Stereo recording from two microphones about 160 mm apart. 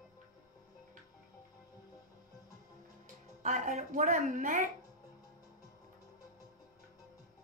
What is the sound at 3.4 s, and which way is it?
A woman's voice, 50° right (ahead or behind).